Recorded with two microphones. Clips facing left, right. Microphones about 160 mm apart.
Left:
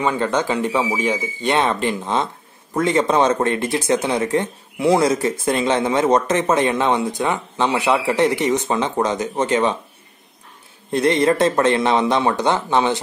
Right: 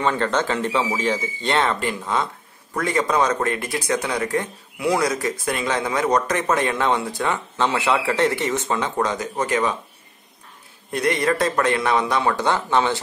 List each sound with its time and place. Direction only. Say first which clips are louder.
0.0 s speech: left 2 dB; 10° left (ahead or behind)
10.9 s speech: left 5 dB; 25° left (ahead or behind)